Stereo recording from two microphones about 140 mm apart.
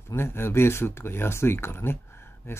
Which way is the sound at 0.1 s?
15° left (ahead or behind).